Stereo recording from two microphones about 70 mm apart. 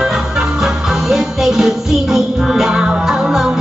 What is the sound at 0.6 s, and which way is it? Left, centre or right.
Music, centre.